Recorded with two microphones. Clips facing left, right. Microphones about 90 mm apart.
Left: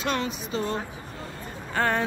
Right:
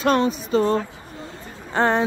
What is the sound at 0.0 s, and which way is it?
Speech, 40° right (ahead or behind).